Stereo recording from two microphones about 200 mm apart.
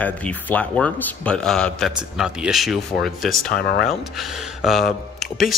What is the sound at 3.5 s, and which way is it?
Speech, 50° left (ahead or behind).